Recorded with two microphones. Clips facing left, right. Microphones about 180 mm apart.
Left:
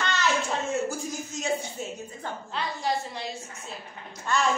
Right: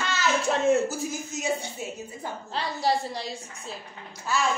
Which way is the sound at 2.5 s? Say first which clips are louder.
Right 3 dB; 35° right (ahead or behind).